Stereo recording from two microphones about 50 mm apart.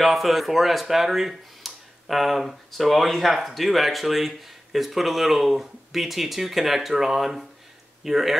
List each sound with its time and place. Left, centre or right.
0.0 s speech: centre